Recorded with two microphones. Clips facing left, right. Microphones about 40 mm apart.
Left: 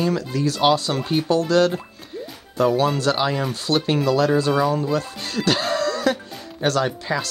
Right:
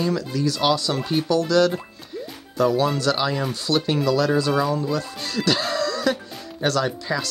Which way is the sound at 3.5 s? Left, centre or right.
Left.